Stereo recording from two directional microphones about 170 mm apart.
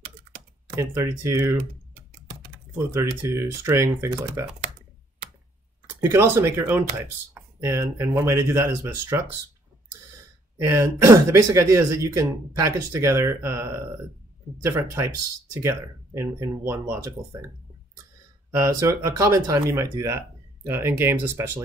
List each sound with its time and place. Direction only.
0.7 s speech: 15° right (ahead or behind)
2.9 s speech: 15° right (ahead or behind)
5.9 s speech: 15° right (ahead or behind)
10.6 s speech: 15° right (ahead or behind)
18.5 s speech: 15° right (ahead or behind)